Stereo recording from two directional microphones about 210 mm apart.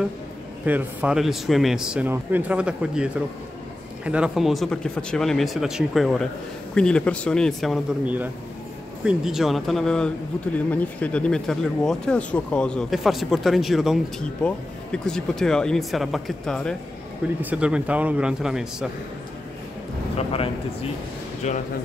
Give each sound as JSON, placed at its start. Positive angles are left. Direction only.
{"t": 0.7, "sound": "speech", "side_deg": -5}
{"t": 21.4, "sound": "a man's voice", "side_deg": 35}